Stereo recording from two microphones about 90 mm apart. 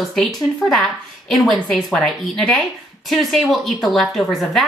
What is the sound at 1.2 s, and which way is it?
A woman's voice, centre (ahead or behind).